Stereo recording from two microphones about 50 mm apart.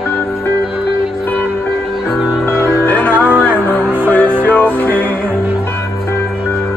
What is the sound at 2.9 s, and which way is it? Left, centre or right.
Music, left.